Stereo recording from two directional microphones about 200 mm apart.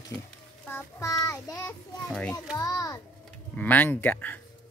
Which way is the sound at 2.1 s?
5° left (ahead or behind).